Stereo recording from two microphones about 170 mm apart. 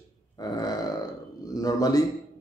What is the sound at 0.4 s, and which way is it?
Grunt, 25° left (ahead or behind).